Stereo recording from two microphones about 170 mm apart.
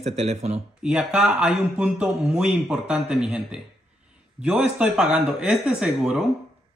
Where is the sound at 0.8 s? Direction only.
5° right (ahead or behind).